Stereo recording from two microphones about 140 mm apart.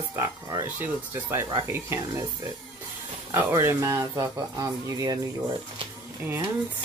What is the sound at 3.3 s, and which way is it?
Speech, 20° right (ahead or behind).